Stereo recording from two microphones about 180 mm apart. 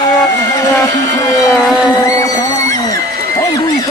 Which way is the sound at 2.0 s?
20° left (ahead or behind).